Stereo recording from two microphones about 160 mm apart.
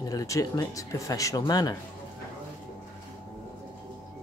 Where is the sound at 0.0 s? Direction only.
20° left (ahead or behind).